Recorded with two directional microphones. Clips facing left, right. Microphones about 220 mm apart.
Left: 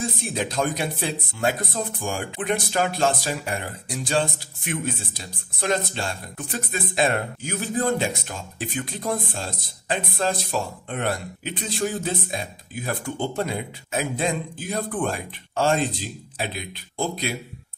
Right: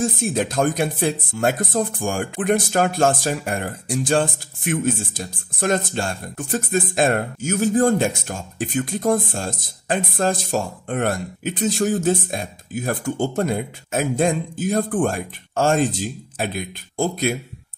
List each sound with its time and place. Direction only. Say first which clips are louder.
0.0 s speech: right 6 dB; 50° right (ahead or behind)